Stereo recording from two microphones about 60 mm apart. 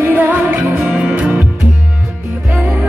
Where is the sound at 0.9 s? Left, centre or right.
Right.